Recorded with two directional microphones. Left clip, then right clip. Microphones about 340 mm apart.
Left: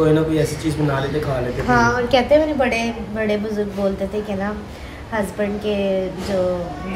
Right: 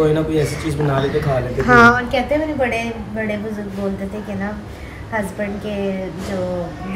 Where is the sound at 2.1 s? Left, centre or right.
Left.